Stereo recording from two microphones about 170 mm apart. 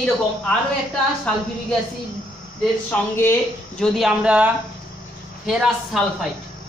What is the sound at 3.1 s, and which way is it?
Speech, 15° left (ahead or behind).